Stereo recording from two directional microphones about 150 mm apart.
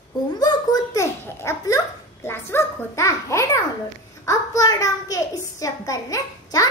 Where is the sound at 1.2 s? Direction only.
20° left (ahead or behind).